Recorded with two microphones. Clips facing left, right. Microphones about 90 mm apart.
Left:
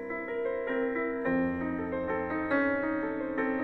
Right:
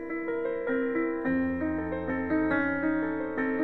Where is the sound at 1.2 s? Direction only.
10° right (ahead or behind).